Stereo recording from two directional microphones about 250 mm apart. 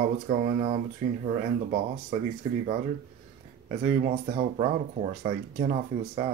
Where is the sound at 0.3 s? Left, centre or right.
Right.